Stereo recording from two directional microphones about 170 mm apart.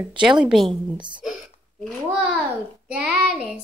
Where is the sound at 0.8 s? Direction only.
25° right (ahead or behind).